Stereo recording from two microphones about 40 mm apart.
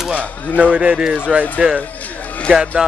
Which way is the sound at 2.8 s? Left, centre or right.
Centre.